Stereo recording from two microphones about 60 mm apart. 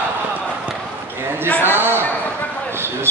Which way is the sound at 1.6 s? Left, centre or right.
Right.